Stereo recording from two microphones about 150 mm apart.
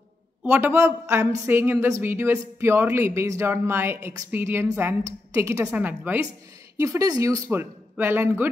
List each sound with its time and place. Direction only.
0.4 s a woman's voice: 15° right (ahead or behind)